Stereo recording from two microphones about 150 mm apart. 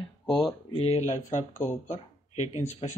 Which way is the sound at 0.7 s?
45° left (ahead or behind).